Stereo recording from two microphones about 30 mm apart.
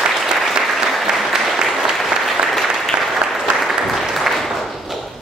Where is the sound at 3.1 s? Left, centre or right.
Centre.